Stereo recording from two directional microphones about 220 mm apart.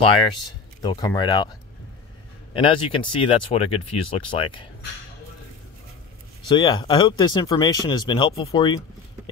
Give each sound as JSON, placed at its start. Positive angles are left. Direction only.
{"t": 0.0, "sound": "speech", "side_deg": 20}
{"t": 2.5, "sound": "speech", "side_deg": 25}
{"t": 6.5, "sound": "speech", "side_deg": 20}